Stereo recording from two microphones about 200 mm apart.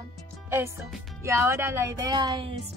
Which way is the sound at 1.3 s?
15° right (ahead or behind).